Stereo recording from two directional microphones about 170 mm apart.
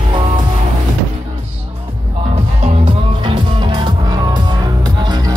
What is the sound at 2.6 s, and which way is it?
Music, 30° right (ahead or behind).